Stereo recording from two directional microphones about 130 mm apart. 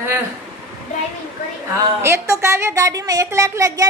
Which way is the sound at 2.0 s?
20° right (ahead or behind).